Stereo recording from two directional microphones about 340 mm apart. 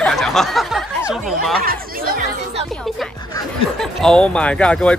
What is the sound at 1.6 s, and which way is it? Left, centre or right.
Speech, right.